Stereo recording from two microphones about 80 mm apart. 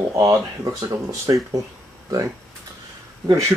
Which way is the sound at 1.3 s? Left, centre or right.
Right.